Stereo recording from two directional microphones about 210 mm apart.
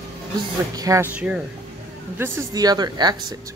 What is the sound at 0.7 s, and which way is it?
Speech, 15° right (ahead or behind).